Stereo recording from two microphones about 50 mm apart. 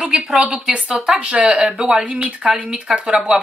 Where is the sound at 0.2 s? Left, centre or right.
Centre.